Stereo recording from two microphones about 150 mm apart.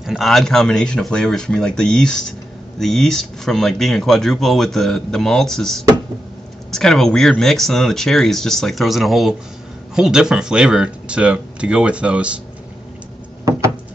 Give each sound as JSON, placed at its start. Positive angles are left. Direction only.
{"t": 0.0, "sound": "speech", "side_deg": 0}